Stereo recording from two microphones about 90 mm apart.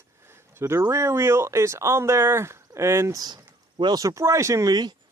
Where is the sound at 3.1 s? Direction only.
50° right (ahead or behind).